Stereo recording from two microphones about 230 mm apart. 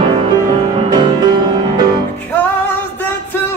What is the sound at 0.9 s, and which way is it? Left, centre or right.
Music, centre.